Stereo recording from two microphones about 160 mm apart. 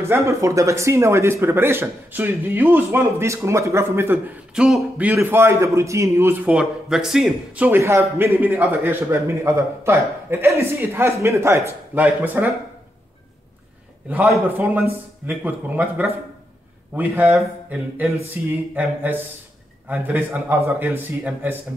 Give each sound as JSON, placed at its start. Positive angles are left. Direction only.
{"t": 0.0, "sound": "a man's voice", "side_deg": -15}
{"t": 4.6, "sound": "a man's voice", "side_deg": -5}
{"t": 14.0, "sound": "a man's voice", "side_deg": -10}